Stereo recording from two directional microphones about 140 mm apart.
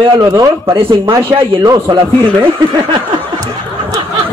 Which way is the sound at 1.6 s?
25° right (ahead or behind).